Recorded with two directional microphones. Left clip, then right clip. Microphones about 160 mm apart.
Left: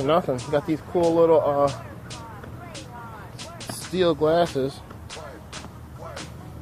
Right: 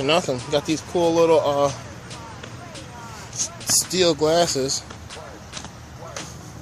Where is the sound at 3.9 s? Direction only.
15° right (ahead or behind).